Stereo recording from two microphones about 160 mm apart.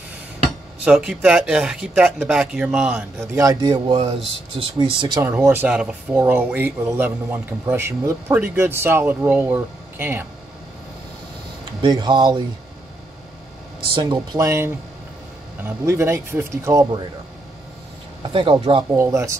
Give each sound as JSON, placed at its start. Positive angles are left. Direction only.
{"t": 0.8, "sound": "speech", "side_deg": -5}
{"t": 3.3, "sound": "a man's voice", "side_deg": -20}
{"t": 5.2, "sound": "a man's voice", "side_deg": -15}
{"t": 11.8, "sound": "a man's voice", "side_deg": -25}
{"t": 14.3, "sound": "a man's voice", "side_deg": -20}
{"t": 18.2, "sound": "speech", "side_deg": -30}
{"t": 18.9, "sound": "a man's voice", "side_deg": -20}